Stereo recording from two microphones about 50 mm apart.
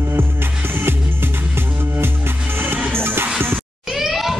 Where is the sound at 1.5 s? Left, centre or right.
Right.